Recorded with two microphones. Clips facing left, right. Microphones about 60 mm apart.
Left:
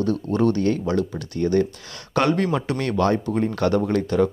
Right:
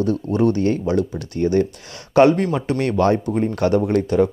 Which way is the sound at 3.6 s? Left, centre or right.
Centre.